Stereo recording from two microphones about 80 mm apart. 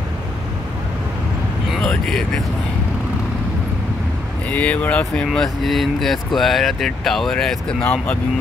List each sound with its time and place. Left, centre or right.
1.9 s speech: centre
4.5 s speech: centre
7.8 s speech: centre